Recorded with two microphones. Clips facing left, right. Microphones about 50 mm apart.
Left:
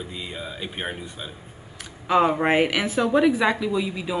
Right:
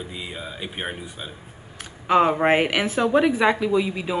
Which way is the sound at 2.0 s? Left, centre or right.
Right.